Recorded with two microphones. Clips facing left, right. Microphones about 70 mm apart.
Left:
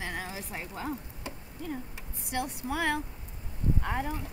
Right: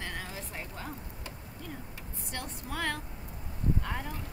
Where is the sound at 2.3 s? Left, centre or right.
Centre.